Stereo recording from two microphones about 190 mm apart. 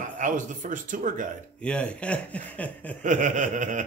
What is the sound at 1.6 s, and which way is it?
A man's voice, 5° left (ahead or behind).